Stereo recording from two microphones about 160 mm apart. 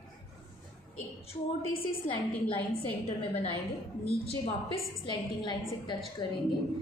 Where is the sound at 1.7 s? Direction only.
35° left (ahead or behind).